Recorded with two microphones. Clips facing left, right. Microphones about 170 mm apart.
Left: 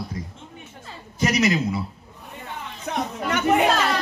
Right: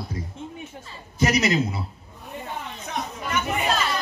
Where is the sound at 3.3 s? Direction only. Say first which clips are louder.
Left 6 dB; 75° left (ahead or behind).